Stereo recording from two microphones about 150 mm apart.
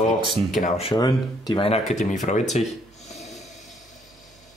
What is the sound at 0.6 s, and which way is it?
Speech, 55° left (ahead or behind).